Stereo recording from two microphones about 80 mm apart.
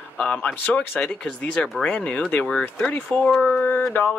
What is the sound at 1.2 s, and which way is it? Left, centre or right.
Speech, centre.